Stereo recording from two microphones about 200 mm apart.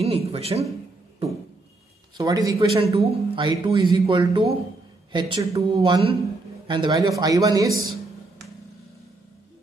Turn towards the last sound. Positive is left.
turn(degrees=-20)  # may be behind; listen again after turning